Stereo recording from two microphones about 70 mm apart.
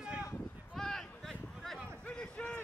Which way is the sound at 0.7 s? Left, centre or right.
Centre.